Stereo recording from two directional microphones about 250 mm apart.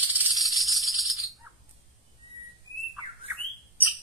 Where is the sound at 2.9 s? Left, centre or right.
Centre.